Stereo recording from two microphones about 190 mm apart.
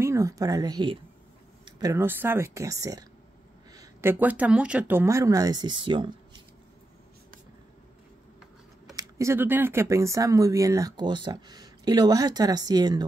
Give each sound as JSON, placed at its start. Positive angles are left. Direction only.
{"t": 0.0, "sound": "speech", "side_deg": -15}
{"t": 8.9, "sound": "speech", "side_deg": -15}